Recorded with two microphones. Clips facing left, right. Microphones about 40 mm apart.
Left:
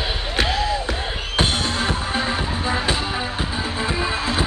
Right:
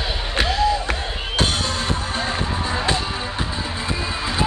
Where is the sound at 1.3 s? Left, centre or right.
Centre.